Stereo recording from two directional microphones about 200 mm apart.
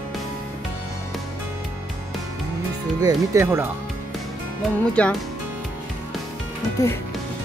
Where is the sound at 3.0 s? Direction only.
15° right (ahead or behind).